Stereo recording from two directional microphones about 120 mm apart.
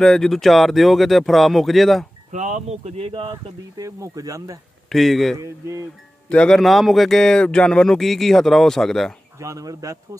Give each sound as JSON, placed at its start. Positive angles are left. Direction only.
{"t": 0.0, "sound": "speech", "side_deg": 5}
{"t": 2.3, "sound": "speech", "side_deg": -90}
{"t": 3.7, "sound": "speech", "side_deg": -30}
{"t": 4.8, "sound": "speech", "side_deg": 0}
{"t": 5.4, "sound": "speech", "side_deg": -25}
{"t": 6.2, "sound": "speech", "side_deg": 10}
{"t": 9.4, "sound": "speech", "side_deg": -30}